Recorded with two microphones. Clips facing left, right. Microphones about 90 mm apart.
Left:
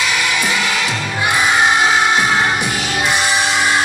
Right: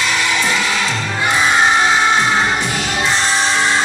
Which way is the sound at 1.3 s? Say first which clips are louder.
Right 1 dB; 15° left (ahead or behind).